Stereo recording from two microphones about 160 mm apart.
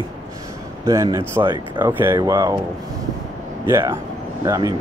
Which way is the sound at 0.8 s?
20° right (ahead or behind).